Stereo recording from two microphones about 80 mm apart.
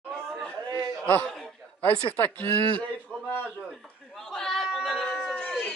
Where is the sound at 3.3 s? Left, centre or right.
Left.